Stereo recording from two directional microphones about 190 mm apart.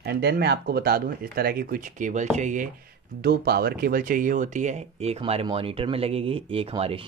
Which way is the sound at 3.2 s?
60° right (ahead or behind).